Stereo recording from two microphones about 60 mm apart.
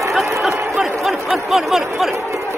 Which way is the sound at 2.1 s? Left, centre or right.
Right.